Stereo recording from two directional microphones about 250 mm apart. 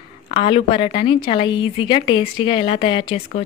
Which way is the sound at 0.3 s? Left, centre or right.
Left.